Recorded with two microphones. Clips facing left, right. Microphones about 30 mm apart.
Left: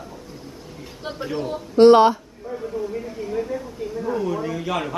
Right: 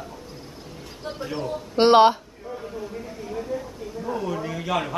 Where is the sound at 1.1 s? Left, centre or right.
Left.